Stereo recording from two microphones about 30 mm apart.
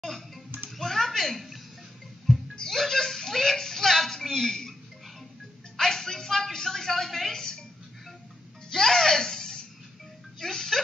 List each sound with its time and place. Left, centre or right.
0.1 s hands: centre
0.7 s a sound: centre
2.6 s speech: centre
5.8 s a woman's voice: centre
7.3 s a sound: left
8.7 s a woman's voice: centre